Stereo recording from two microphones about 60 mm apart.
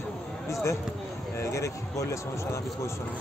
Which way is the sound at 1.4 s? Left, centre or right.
Left.